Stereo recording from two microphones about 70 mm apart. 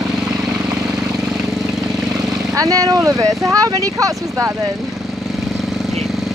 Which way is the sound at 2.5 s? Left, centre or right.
Right.